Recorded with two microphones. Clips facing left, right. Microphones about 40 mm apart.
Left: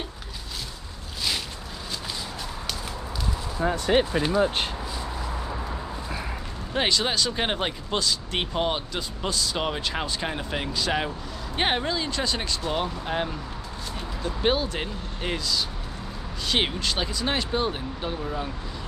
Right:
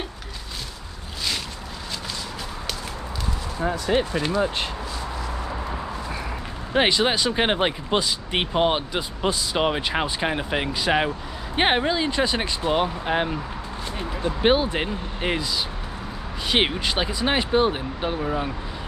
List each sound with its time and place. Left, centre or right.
6.7 s speech: right